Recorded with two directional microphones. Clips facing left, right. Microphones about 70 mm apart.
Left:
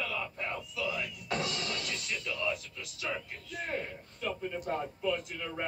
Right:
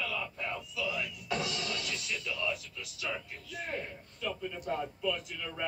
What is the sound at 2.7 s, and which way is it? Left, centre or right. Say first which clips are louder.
Speech: left 1 dB; left.